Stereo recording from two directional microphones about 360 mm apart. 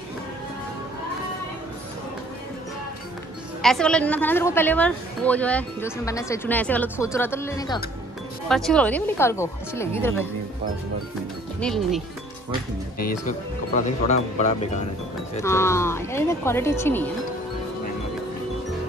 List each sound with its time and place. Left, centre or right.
3.6 s a woman's voice: centre
11.6 s a woman's voice: centre
13.7 s speech: centre
15.4 s speech: centre